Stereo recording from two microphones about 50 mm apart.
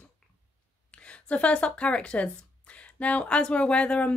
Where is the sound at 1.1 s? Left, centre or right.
Left.